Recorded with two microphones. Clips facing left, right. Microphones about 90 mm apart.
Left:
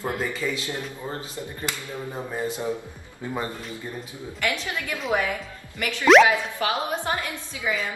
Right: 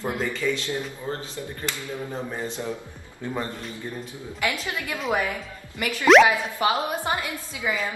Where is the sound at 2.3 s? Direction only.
10° left (ahead or behind).